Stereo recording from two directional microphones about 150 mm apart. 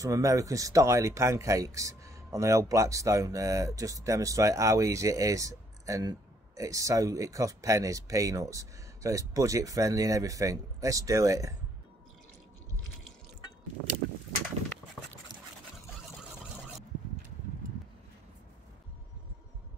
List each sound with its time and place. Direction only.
0.0 s speech: 20° right (ahead or behind)